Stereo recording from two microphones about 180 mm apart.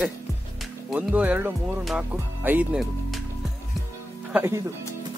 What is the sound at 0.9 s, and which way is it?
Speech, 10° right (ahead or behind).